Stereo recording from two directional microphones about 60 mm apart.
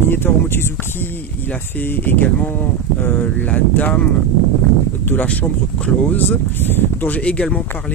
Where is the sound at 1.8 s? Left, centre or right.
Left.